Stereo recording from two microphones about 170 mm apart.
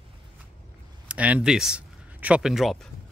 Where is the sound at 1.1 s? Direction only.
10° right (ahead or behind).